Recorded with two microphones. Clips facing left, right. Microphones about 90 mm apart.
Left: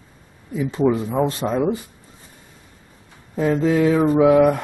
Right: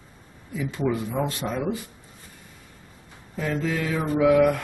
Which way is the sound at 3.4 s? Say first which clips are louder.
Left 9 dB; 30° left (ahead or behind).